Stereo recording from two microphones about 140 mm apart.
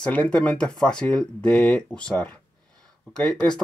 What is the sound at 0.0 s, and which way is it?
Speech, 10° left (ahead or behind).